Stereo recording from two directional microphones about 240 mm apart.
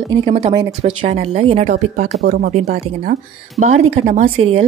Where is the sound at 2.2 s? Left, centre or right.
Right.